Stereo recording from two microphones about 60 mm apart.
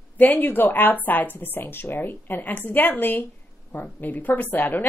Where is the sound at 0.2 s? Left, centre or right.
Left.